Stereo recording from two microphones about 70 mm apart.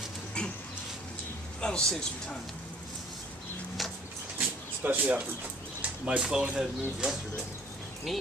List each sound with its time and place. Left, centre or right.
0.4 s a sound: centre
1.6 s a man's voice: centre
4.8 s speech: centre